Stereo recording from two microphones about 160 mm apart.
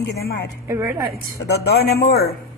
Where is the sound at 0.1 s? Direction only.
80° left.